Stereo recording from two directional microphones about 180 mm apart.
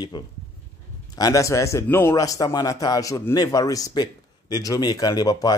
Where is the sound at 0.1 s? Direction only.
25° left (ahead or behind).